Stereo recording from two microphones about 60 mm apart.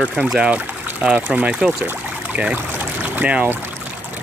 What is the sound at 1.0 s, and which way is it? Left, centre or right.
Speech, right.